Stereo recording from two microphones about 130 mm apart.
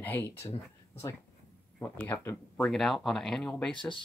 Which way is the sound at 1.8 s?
15° left (ahead or behind).